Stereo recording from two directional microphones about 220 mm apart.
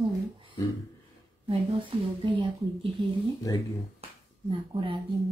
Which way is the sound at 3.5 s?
15° left (ahead or behind).